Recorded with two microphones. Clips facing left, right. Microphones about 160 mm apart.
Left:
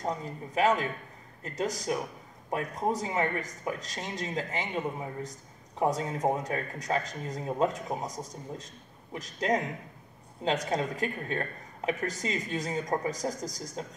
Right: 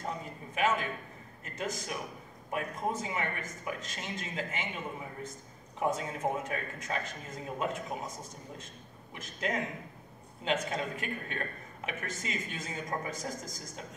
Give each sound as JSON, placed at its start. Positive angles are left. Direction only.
{"t": 0.6, "sound": "speech", "side_deg": 35}